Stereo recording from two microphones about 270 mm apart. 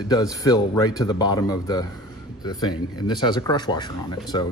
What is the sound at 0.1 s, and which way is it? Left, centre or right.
A man's voice, centre.